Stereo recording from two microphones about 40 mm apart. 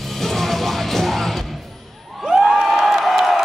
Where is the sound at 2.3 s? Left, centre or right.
Centre.